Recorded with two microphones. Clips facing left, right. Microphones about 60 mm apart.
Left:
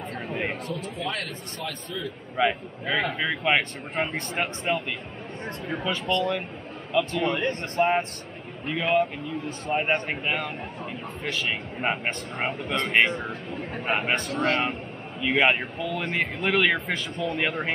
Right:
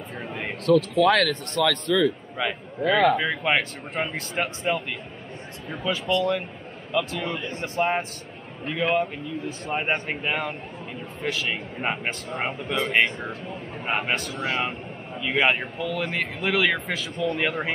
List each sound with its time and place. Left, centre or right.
0.7 s a man's voice: right
1.6 s speech: right
2.4 s a man's voice: centre
7.2 s speech: left
7.6 s speech: centre